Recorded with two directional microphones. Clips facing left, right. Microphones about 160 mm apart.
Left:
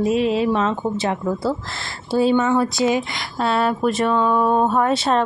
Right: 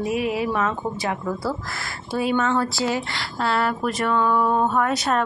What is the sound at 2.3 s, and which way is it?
A woman's voice, 10° left (ahead or behind).